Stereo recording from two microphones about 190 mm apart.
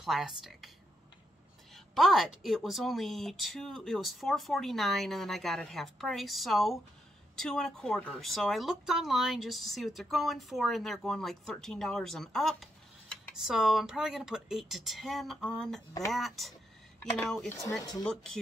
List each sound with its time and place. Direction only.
0.0 s speech: centre (ahead or behind)
2.0 s speech: centre (ahead or behind)
17.5 s speech: 15° left (ahead or behind)
18.0 s speech: 5° left (ahead or behind)